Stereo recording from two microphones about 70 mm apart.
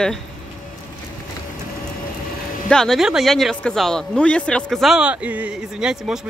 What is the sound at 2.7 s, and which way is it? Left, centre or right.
Speech, centre.